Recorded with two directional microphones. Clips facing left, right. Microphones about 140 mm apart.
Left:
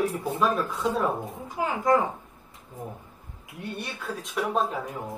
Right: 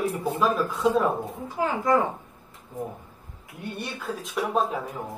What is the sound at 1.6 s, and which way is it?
Speech, 15° left (ahead or behind).